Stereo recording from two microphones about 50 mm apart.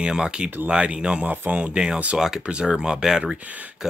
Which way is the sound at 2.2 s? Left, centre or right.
Centre.